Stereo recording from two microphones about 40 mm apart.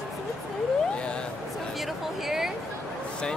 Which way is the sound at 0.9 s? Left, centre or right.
Left.